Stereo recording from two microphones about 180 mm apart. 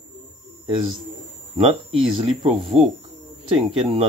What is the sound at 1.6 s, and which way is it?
Speech, 35° right (ahead or behind).